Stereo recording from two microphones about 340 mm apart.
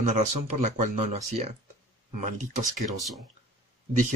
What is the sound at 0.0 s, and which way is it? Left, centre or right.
Speech, right.